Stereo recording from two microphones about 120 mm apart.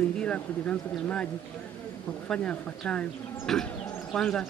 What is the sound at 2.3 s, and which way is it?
Speech, 10° left (ahead or behind).